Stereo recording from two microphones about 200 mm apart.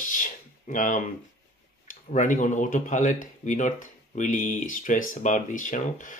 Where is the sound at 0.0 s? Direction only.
40° left (ahead or behind).